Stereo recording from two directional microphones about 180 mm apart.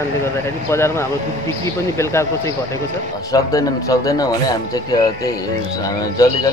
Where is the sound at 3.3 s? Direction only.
20° left (ahead or behind).